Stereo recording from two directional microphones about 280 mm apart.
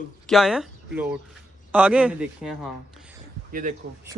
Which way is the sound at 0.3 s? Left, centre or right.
Centre.